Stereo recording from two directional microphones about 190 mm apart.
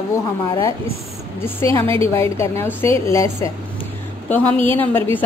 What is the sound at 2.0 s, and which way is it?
A woman's voice, 15° left (ahead or behind).